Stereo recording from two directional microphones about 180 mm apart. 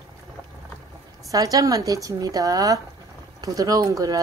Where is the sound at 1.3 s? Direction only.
20° right (ahead or behind).